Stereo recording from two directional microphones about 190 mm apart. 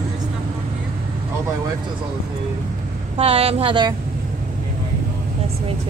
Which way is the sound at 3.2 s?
30° right (ahead or behind).